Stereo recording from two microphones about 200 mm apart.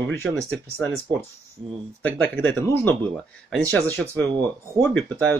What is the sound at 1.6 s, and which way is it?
Speech, 25° right (ahead or behind).